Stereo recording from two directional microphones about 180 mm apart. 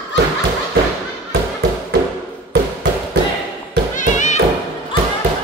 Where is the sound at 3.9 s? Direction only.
45° left (ahead or behind).